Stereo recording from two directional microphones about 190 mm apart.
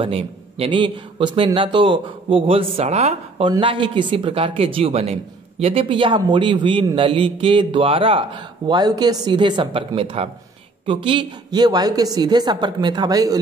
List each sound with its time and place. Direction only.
0.0 s a man's voice: 30° right (ahead or behind)